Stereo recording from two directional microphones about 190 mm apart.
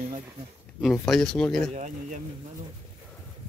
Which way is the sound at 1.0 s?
Centre (ahead or behind).